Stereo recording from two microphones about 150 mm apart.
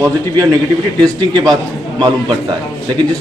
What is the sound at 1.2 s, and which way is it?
Speech, 30° right (ahead or behind).